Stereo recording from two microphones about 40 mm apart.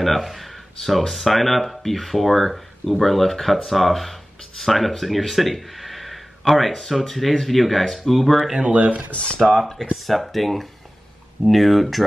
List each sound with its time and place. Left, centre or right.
0.0 s speech: centre
8.5 s speech: centre
8.7 s speech: right
9.1 s speech: left
9.4 s speech: centre